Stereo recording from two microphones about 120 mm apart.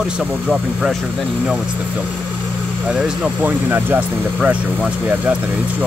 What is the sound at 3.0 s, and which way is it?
Speech, 10° right (ahead or behind).